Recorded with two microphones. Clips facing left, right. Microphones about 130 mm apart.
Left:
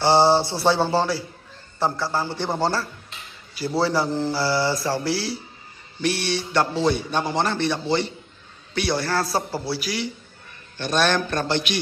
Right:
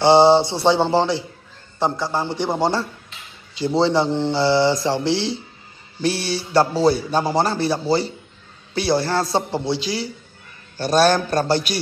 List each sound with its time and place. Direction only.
0.0 s a man's voice: 20° right (ahead or behind)
10.8 s a man's voice: 35° right (ahead or behind)